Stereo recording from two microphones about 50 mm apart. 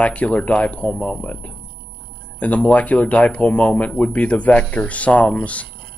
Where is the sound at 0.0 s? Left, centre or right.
Left.